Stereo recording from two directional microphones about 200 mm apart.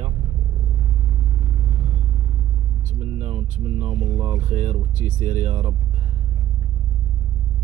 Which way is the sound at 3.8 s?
35° right (ahead or behind).